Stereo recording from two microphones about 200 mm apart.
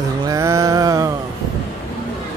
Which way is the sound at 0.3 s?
15° right (ahead or behind).